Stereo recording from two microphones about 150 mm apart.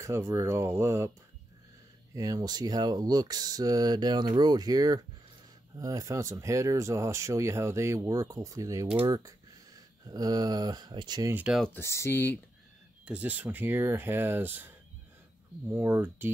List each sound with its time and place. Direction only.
0.0 s speech: 20° right (ahead or behind)
2.1 s speech: 25° right (ahead or behind)
11.3 s speech: 5° right (ahead or behind)
11.6 s speech: 15° left (ahead or behind)
13.0 s speech: 10° right (ahead or behind)
15.7 s speech: 15° right (ahead or behind)